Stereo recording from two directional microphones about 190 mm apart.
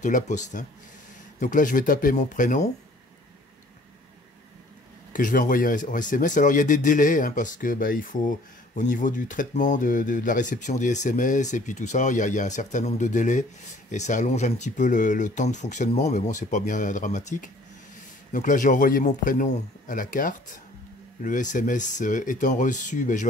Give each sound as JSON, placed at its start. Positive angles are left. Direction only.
{"t": 0.0, "sound": "speech", "side_deg": 40}
{"t": 5.1, "sound": "speech", "side_deg": 45}